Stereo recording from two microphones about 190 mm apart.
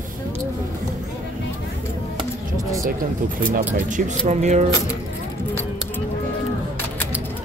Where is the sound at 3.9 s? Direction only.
40° right (ahead or behind).